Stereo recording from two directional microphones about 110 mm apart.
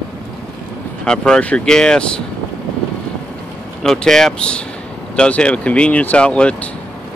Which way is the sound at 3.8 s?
5° left (ahead or behind).